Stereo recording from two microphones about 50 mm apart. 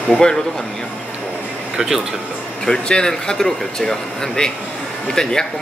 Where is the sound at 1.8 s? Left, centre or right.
Centre.